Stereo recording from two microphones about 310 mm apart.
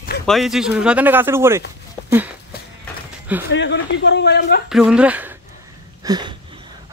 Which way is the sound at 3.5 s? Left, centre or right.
Left.